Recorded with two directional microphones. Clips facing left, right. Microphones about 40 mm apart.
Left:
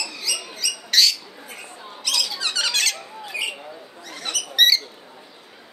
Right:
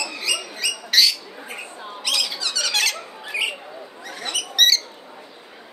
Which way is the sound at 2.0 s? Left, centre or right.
Centre.